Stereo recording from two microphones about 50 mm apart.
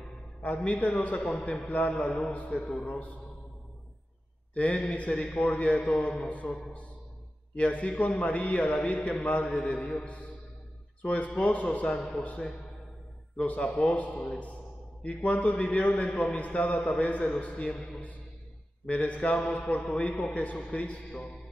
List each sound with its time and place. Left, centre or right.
0.7 s a man's voice: left
4.6 s a man's voice: left
7.5 s a man's voice: left
17.6 s a man's voice: centre
18.9 s a man's voice: left